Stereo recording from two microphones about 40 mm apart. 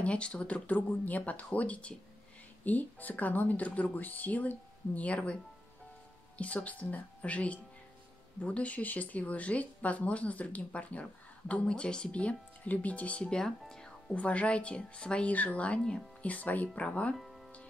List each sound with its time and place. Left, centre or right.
0.0 s speech: left
0.7 s speech: left
2.6 s speech: left
13.3 s music: centre
14.1 s a woman's voice: left
15.2 s speech: left
17.2 s music: centre